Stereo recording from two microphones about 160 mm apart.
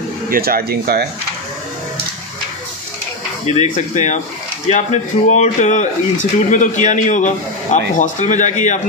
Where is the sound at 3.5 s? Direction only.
50° left (ahead or behind).